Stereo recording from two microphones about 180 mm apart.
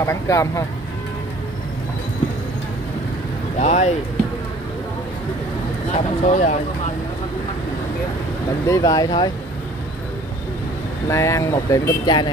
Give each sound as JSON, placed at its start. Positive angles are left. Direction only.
{"t": 0.0, "sound": "speech", "side_deg": 15}
{"t": 3.5, "sound": "speech", "side_deg": 40}
{"t": 6.2, "sound": "speech", "side_deg": 35}
{"t": 8.6, "sound": "speech", "side_deg": 20}
{"t": 11.1, "sound": "speech", "side_deg": 15}